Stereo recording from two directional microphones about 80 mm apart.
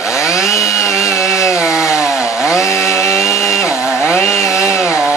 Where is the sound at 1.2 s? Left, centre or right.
Centre.